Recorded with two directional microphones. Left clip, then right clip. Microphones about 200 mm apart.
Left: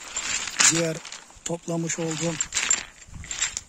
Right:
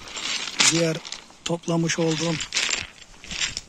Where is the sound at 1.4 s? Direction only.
15° left (ahead or behind).